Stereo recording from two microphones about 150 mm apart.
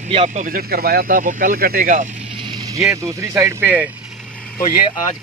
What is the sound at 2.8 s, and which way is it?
Speech, 20° right (ahead or behind).